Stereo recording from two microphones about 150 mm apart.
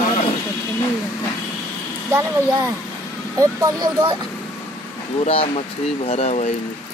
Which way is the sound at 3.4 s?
25° right (ahead or behind).